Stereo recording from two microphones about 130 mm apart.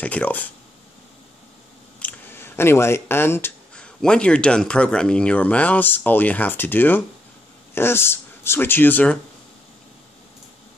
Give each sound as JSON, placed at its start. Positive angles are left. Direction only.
{"t": 0.0, "sound": "speech", "side_deg": 10}
{"t": 2.0, "sound": "a sound", "side_deg": 15}
{"t": 3.7, "sound": "speech", "side_deg": 5}